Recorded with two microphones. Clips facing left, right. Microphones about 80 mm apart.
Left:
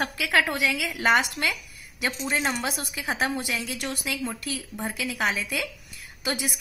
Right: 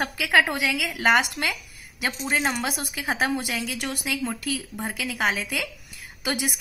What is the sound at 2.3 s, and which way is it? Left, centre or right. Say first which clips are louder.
A woman's voice: right 3 dB; centre.